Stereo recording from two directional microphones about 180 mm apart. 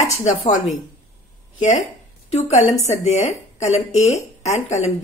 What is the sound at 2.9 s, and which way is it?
Speech, 40° left (ahead or behind).